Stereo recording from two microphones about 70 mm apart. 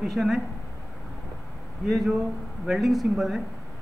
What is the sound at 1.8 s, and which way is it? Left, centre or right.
Speech, centre.